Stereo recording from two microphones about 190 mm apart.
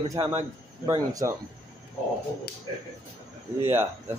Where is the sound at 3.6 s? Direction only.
10° right (ahead or behind).